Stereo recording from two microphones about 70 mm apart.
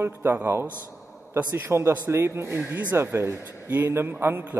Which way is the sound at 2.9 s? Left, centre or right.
Right.